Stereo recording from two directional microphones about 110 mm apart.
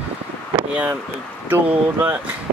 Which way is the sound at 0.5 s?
15° right (ahead or behind).